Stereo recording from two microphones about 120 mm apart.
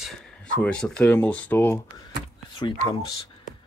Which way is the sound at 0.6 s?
10° left (ahead or behind).